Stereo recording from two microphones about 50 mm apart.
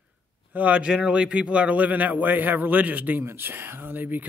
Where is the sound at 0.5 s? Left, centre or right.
Right.